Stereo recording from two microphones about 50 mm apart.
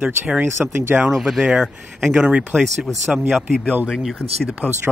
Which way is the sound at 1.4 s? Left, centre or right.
Centre.